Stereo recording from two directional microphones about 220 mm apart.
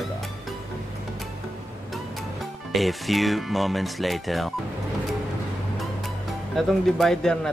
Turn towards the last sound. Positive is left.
turn(degrees=0)  # may be behind; listen again after turning